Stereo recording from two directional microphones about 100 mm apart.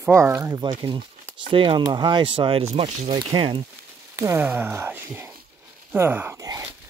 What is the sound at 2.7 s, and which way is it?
Speech, 75° right (ahead or behind).